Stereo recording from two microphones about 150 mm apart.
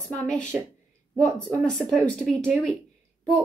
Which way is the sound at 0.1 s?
5° left (ahead or behind).